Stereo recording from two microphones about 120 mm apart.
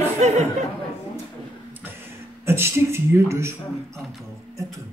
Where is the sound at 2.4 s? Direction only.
20° right (ahead or behind).